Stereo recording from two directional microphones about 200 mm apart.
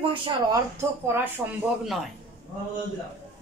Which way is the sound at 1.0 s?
10° right (ahead or behind).